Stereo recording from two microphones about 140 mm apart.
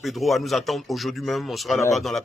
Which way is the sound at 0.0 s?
Centre (ahead or behind).